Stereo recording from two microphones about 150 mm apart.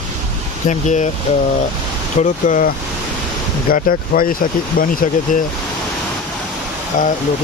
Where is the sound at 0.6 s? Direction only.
50° left (ahead or behind).